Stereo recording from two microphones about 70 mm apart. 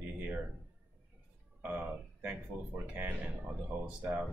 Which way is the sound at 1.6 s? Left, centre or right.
Right.